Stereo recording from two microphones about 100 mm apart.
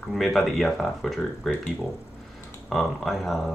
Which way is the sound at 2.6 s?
Centre (ahead or behind).